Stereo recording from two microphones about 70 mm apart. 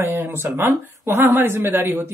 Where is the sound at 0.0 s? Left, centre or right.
Right.